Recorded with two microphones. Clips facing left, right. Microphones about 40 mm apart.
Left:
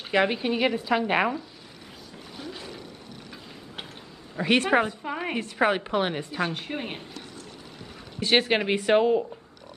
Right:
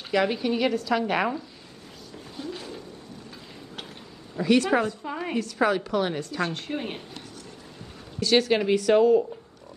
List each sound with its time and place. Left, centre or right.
0.1 s a woman's voice: left
4.4 s speech: left
4.8 s a woman's voice: left
8.2 s speech: left